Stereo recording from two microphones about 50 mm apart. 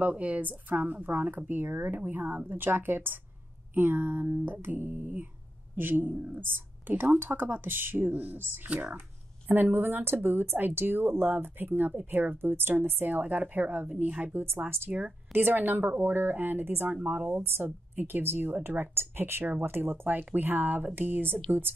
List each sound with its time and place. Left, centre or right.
0.0 s a woman's voice: right
17.4 s a woman's voice: right